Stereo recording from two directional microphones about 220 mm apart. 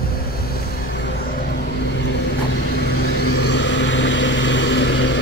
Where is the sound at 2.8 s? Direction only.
45° left (ahead or behind).